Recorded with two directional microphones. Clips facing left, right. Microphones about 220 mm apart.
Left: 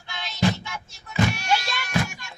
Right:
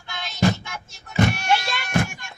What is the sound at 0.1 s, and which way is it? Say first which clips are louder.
Music: right 2 dB; 50° right (ahead or behind).